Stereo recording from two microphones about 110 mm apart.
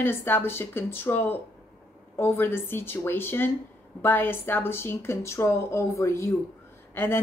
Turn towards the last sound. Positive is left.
turn(degrees=20)  # may be behind; listen again after turning